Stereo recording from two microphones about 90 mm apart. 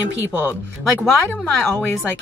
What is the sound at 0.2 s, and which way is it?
Speech, 15° right (ahead or behind).